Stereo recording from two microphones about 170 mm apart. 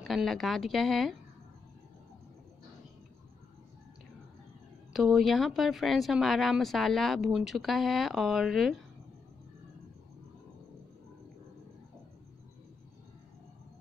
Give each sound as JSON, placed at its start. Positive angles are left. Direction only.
{"t": 0.0, "sound": "speech", "side_deg": 0}
{"t": 4.9, "sound": "speech", "side_deg": 0}